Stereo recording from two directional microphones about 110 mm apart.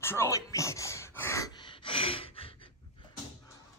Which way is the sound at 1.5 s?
45° left (ahead or behind).